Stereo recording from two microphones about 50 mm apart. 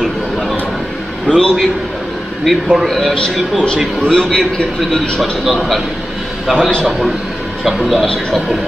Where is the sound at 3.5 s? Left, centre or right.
Centre.